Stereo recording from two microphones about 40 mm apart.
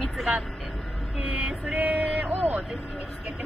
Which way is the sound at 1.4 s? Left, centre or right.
Right.